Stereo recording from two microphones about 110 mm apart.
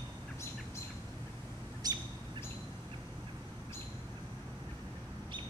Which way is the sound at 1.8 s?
35° right (ahead or behind).